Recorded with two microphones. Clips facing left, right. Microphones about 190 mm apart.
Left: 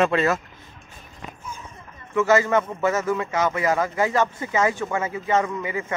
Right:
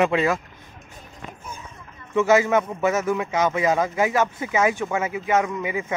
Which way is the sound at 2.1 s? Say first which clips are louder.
Right 1 dB; 15° right (ahead or behind).